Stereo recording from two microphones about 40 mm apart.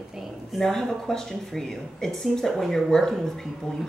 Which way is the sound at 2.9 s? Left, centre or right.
Centre.